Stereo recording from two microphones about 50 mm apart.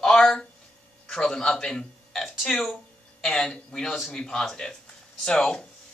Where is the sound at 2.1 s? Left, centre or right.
Centre.